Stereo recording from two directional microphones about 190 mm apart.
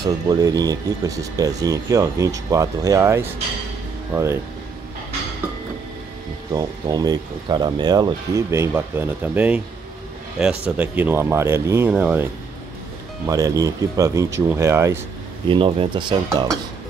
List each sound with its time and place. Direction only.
0.0 s speech: 20° right (ahead or behind)
6.5 s speech: 20° right (ahead or behind)
13.3 s speech: 20° right (ahead or behind)
15.4 s speech: 25° right (ahead or behind)